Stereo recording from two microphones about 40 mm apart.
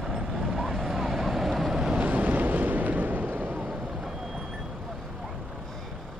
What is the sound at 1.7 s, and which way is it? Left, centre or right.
Vehicle, centre.